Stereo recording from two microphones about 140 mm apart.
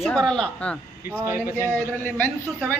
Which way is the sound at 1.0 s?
15° right (ahead or behind).